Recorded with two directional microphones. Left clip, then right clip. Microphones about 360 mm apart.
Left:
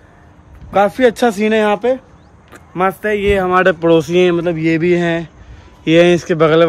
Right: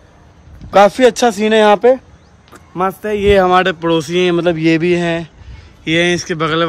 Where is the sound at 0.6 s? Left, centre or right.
Centre.